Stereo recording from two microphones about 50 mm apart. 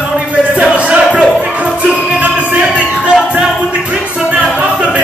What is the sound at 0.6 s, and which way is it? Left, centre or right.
Music, right.